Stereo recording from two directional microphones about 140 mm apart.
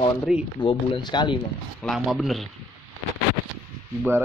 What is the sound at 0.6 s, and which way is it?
Speech, 40° left (ahead or behind).